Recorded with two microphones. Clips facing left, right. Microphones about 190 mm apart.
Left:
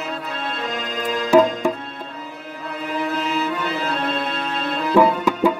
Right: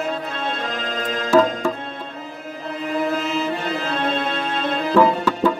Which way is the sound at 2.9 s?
45° right (ahead or behind).